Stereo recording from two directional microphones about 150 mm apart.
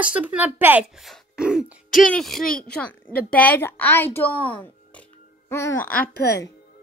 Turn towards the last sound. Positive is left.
turn(degrees=80)